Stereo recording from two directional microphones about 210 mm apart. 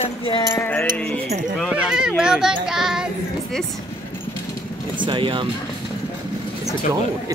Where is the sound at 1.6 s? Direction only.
5° right (ahead or behind).